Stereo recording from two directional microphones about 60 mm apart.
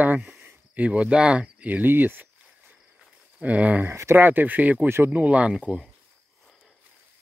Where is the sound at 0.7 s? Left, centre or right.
Right.